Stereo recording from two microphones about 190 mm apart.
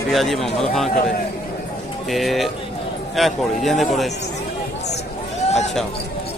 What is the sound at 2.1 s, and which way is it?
A man's voice, centre (ahead or behind).